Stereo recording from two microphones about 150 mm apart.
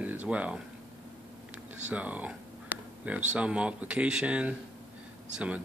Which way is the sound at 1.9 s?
10° right (ahead or behind).